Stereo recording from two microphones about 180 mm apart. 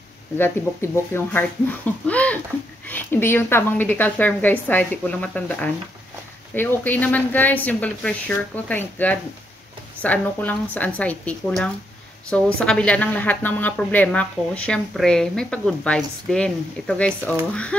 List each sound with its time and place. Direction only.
0.4 s speech: 15° left (ahead or behind)